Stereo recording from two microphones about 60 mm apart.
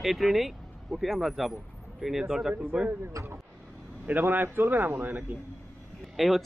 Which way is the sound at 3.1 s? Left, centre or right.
Right.